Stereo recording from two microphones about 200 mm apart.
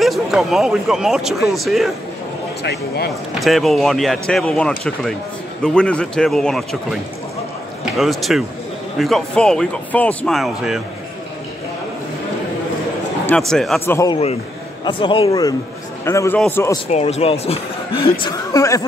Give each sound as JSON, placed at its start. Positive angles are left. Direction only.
{"t": 0.0, "sound": "speech", "side_deg": 0}
{"t": 2.6, "sound": "speech", "side_deg": 55}
{"t": 3.3, "sound": "speech", "side_deg": 0}
{"t": 13.3, "sound": "speech", "side_deg": 5}
{"t": 14.9, "sound": "speech", "side_deg": 25}
{"t": 16.9, "sound": "speech", "side_deg": 30}
{"t": 18.2, "sound": "speech", "side_deg": 20}